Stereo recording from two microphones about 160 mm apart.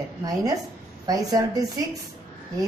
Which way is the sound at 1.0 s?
20° right (ahead or behind).